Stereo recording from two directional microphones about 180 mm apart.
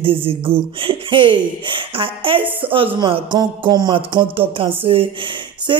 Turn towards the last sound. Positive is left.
turn(degrees=-25)  # may be behind; listen again after turning